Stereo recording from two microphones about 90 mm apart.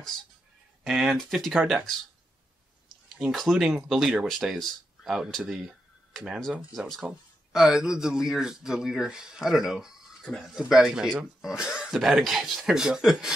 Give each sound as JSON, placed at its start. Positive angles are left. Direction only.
{"t": 0.8, "sound": "speech", "side_deg": -5}
{"t": 3.2, "sound": "a man's voice", "side_deg": 0}